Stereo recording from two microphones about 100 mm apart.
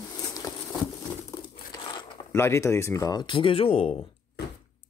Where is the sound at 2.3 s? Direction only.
25° left (ahead or behind).